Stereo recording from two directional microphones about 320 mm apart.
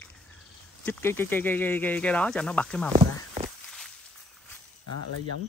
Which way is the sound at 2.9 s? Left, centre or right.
Centre.